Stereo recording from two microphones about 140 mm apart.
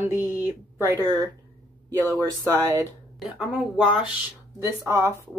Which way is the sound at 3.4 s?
5° right (ahead or behind).